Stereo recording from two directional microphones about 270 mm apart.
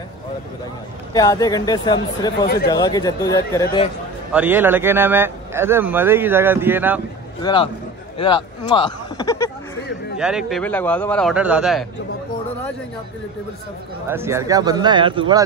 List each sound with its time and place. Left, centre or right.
1.1 s speech: centre
4.3 s a man's voice: centre
7.4 s speech: centre
10.1 s a man's voice: centre
14.0 s a man's voice: centre